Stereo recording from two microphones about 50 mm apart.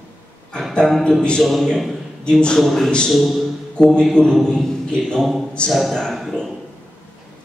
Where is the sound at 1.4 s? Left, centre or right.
Centre.